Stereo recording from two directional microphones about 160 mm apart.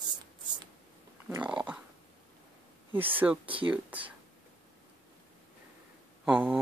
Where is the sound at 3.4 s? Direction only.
35° right (ahead or behind).